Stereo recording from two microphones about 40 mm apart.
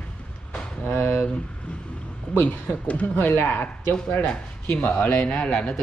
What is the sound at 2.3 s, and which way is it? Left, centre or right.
Speech, left.